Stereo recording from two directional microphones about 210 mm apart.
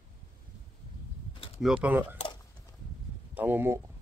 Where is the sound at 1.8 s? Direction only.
5° right (ahead or behind).